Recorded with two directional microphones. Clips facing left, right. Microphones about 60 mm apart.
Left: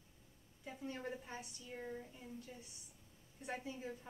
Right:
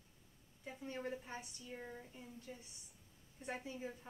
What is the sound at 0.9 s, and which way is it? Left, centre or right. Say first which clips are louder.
A woman's voice: right 4 dB; centre.